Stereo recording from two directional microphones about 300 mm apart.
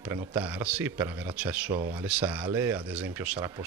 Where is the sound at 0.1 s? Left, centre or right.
Centre.